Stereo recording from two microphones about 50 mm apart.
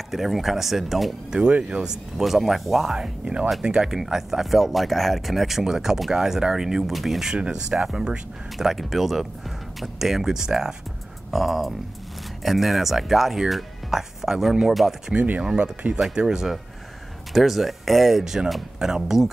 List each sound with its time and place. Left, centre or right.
0.1 s speech: centre
1.3 s speech: centre
2.1 s speech: centre
7.3 s speech: centre
8.5 s speech: centre
11.3 s speech: centre
15.4 s speech: right
16.3 s speech: centre